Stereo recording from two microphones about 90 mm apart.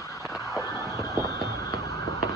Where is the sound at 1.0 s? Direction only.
40° left (ahead or behind).